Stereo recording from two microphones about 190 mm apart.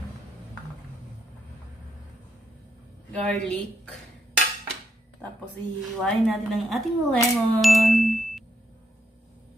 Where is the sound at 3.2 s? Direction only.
5° left (ahead or behind).